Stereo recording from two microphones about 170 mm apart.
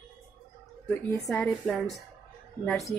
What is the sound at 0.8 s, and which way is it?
A woman's voice, 5° left (ahead or behind).